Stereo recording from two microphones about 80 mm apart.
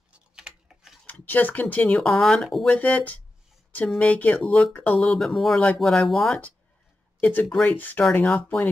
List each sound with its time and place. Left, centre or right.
0.4 s typing: centre
1.2 s speech: left
2.0 s speech: centre
2.7 s speech: centre
4.4 s speech: centre
7.2 s speech: centre